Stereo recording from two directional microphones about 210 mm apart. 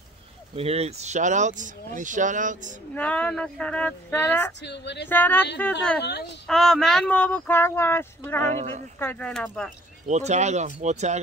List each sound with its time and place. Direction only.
0.6 s speech: 30° right (ahead or behind)
2.9 s speech: 5° left (ahead or behind)
4.6 s a sound: 55° left (ahead or behind)
5.0 s speech: 10° left (ahead or behind)
5.9 s a sound: 50° left (ahead or behind)
6.4 s speech: centre (ahead or behind)
8.5 s speech: 35° right (ahead or behind)
9.0 s speech: 5° left (ahead or behind)
10.0 s speech: 35° right (ahead or behind)